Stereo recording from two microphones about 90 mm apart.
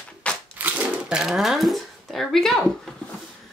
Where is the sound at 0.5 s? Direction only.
15° right (ahead or behind); by 2.6 s 5° left (ahead or behind).